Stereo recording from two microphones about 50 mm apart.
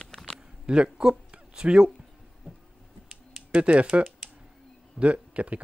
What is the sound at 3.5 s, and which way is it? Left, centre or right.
Speech, right.